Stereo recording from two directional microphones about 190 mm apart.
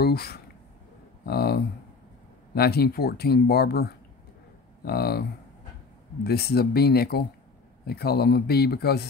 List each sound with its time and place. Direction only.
0.0 s speech: 55° left (ahead or behind)
6.2 s speech: 55° left (ahead or behind)